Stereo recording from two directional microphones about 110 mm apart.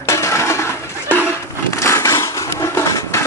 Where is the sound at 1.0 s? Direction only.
15° right (ahead or behind).